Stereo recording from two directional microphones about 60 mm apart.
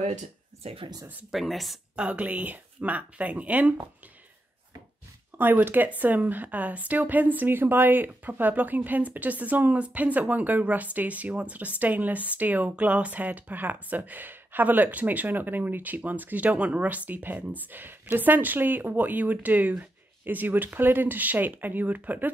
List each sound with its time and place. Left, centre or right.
1.3 s speech: centre
2.0 s speech: right
5.4 s speech: right